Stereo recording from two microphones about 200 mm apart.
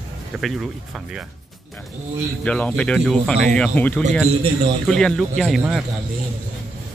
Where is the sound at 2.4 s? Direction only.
5° left (ahead or behind).